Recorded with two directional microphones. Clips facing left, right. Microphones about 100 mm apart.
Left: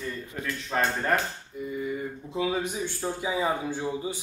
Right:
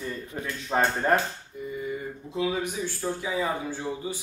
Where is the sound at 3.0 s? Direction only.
20° left (ahead or behind).